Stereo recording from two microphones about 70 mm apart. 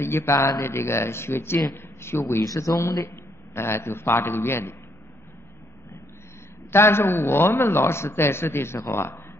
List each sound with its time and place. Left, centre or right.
0.0 s a man's voice: left
2.4 s a man's voice: left
6.7 s a man's voice: left